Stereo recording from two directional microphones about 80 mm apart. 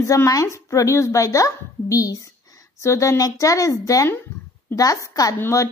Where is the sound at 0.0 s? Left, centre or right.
Left.